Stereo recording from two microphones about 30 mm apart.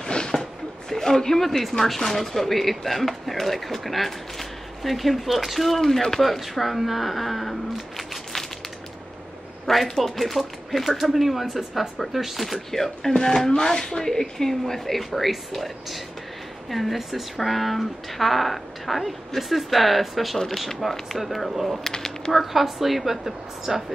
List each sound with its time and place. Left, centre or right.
0.0 s a sound: left
0.3 s a sound: centre
2.0 s speech: centre
9.7 s speech: centre
11.1 s speech: centre
12.5 s speech: centre
21.5 s speech: centre
21.8 s speech: centre
22.3 s speech: centre